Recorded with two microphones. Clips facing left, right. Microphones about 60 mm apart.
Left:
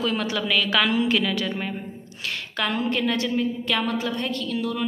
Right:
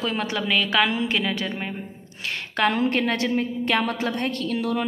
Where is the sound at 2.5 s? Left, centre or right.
Right.